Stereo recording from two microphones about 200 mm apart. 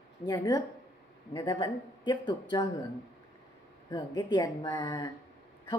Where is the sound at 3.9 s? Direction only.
20° left (ahead or behind).